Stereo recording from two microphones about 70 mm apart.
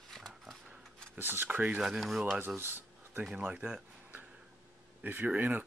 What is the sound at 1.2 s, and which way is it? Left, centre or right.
Speech, right.